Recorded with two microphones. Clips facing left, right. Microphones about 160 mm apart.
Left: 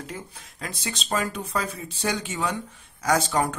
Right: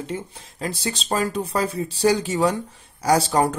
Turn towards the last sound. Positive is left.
turn(degrees=-35)  # may be behind; listen again after turning